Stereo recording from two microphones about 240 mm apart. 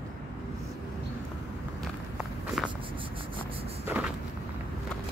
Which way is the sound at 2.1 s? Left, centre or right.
Centre.